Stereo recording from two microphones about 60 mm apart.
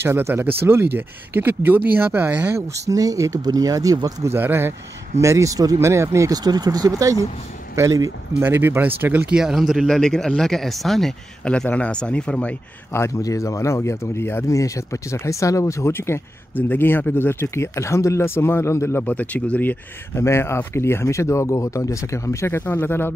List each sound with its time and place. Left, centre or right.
0.0 s speech: right
2.5 s speech: right
4.3 s speech: right
5.2 s speech: right
5.8 s speech: right
8.4 s speech: right
9.3 s speech: centre
9.8 s speech: centre
11.4 s speech: centre
13.2 s speech: left
14.5 s speech: left
19.0 s speech: left
20.2 s speech: left